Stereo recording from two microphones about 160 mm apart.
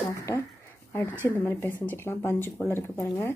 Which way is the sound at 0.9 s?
10° left (ahead or behind).